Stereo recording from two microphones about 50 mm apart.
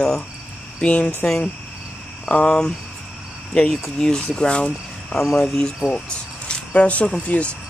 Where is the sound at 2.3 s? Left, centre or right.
Centre.